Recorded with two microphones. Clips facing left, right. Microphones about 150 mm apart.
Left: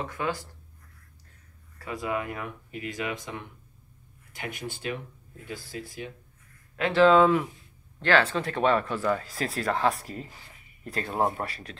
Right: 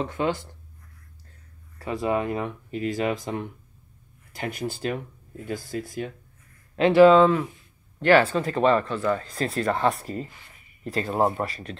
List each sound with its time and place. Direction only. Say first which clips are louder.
0.0 s speech: right 5 dB; 25° right (ahead or behind)
1.8 s speech: right 6 dB; 25° right (ahead or behind); by 6.1 s 50° right (ahead or behind)
6.9 s speech: right 5 dB; 10° right (ahead or behind)
7.2 s speech: right 2 dB; 5° left (ahead or behind)
8.0 s speech: right 5 dB; 5° right (ahead or behind)